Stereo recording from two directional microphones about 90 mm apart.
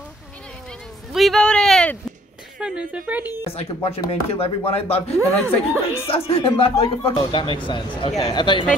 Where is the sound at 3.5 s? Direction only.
90° left.